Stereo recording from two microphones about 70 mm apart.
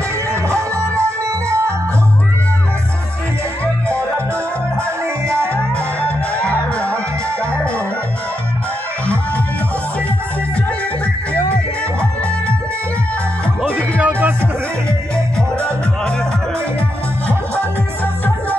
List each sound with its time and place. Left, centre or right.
0.3 s music: right
5.5 s music: centre
13.9 s music: right
17.3 s music: left